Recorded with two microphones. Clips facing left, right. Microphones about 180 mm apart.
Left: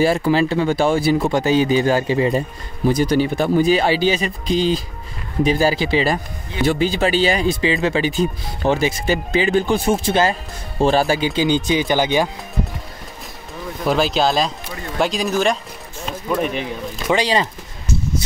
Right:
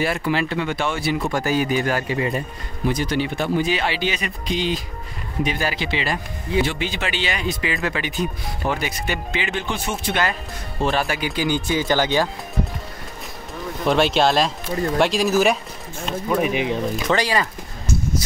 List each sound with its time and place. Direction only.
0.0 s speech: 35° left (ahead or behind)
1.2 s speech: 20° left (ahead or behind)
13.8 s speech: centre (ahead or behind)
17.1 s speech: 20° left (ahead or behind)